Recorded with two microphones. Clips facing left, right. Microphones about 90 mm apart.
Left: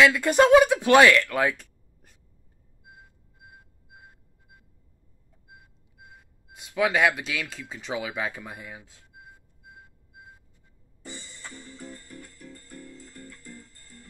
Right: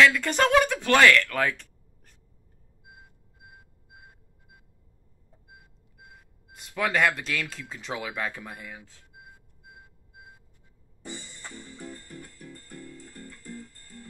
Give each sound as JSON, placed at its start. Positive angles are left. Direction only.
{"t": 0.0, "sound": "speech", "side_deg": 15}
{"t": 6.0, "sound": "speech", "side_deg": 0}
{"t": 11.1, "sound": "music", "side_deg": -5}